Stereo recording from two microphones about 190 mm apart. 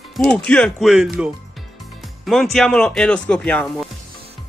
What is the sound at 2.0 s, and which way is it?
Music, centre (ahead or behind).